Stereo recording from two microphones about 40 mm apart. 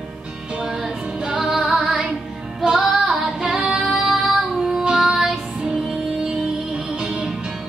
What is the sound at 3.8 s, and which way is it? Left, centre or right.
Music, centre.